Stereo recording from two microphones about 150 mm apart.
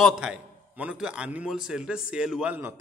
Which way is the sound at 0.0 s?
5° right (ahead or behind).